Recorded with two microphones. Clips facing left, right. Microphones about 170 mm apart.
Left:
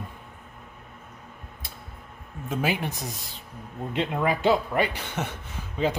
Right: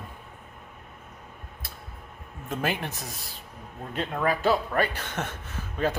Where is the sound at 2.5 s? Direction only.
10° left (ahead or behind).